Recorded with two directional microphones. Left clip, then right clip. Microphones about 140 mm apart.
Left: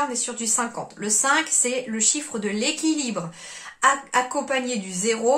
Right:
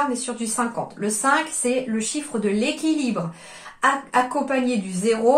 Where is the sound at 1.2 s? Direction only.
25° left (ahead or behind).